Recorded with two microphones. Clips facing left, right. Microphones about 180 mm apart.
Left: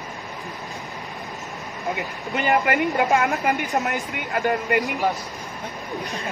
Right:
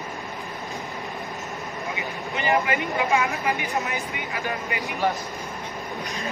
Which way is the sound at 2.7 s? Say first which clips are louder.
Left 4 dB; 55° left (ahead or behind).